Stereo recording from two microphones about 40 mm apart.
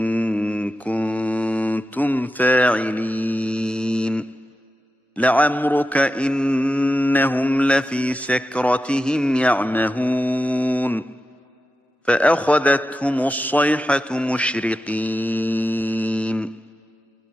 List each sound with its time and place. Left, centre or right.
0.0 s mantra: left
3.4 s mantra: left
5.1 s a man's voice: left
5.9 s a man's voice: left
9.0 s a man's voice: centre
9.4 s mantra: left
12.0 s a man's voice: left